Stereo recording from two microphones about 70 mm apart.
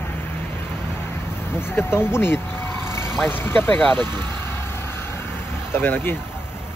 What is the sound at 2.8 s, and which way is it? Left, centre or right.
Vehicle, left.